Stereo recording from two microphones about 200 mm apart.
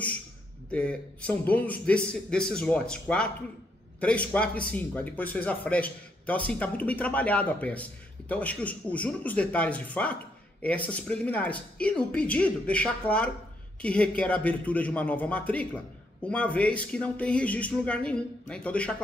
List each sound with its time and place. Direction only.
0.7 s a man's voice: 5° left (ahead or behind)